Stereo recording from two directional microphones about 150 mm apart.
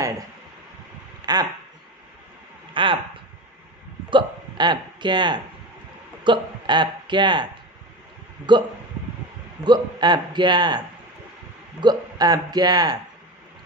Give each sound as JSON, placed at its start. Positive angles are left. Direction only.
{"t": 1.2, "sound": "speech", "side_deg": -25}
{"t": 2.7, "sound": "speech", "side_deg": -35}
{"t": 4.1, "sound": "speech", "side_deg": -30}
{"t": 9.7, "sound": "a man's voice", "side_deg": -30}
{"t": 11.8, "sound": "a man's voice", "side_deg": -25}